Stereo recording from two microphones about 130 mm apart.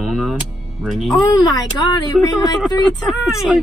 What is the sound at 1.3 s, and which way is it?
Speech, 25° left (ahead or behind).